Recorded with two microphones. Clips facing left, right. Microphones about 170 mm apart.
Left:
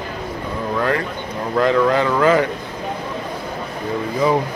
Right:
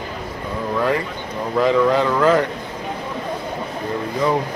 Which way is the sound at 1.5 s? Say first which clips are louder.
Even; centre (ahead or behind).